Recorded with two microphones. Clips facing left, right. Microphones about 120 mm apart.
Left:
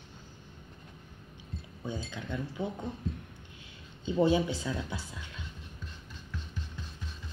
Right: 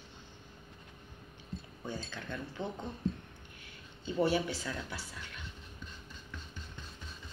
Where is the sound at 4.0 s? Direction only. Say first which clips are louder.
Left 4 dB; 20° left (ahead or behind).